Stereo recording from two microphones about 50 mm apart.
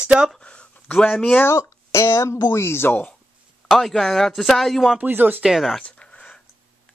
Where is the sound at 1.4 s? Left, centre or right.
Left.